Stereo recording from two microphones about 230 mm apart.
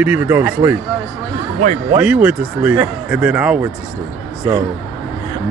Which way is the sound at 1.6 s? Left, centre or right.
Right.